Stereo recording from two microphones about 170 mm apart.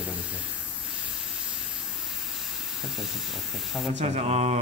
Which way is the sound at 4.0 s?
40° right (ahead or behind).